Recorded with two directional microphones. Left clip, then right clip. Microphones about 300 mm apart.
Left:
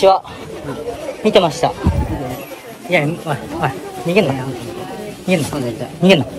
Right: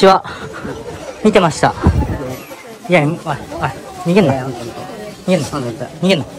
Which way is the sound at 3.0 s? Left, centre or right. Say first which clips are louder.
Right 2 dB; centre.